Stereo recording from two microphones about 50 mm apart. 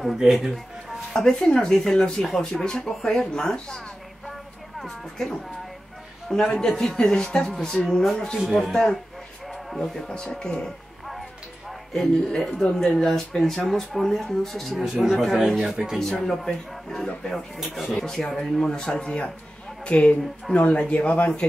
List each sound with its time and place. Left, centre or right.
0.0 s speech: centre
1.2 s speech: centre
6.3 s speech: centre
11.9 s speech: centre
16.0 s speech: centre
17.6 s speech: centre
17.9 s speech: centre; by 21.3 s left